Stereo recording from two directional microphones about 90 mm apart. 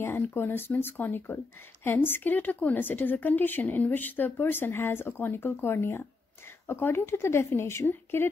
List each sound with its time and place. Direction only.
0.0 s speech: 25° left (ahead or behind)